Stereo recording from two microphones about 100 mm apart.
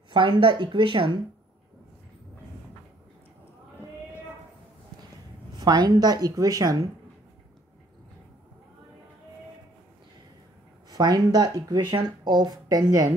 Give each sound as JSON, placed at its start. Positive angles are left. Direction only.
{"t": 0.1, "sound": "speech", "side_deg": -60}
{"t": 5.6, "sound": "speech", "side_deg": -45}
{"t": 10.9, "sound": "speech", "side_deg": -40}